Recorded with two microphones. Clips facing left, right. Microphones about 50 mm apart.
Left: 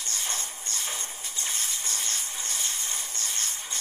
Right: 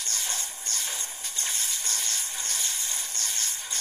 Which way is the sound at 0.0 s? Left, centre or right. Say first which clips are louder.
Even; left.